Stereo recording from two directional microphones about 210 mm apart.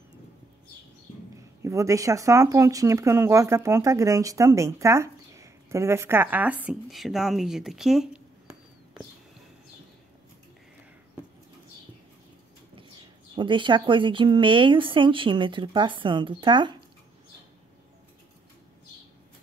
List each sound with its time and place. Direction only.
1.6 s speech: 15° right (ahead or behind)
13.3 s speech: 25° right (ahead or behind)